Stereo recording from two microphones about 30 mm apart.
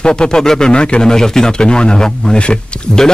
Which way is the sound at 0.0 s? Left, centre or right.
Left.